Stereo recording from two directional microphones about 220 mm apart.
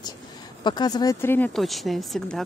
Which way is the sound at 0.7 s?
20° left (ahead or behind).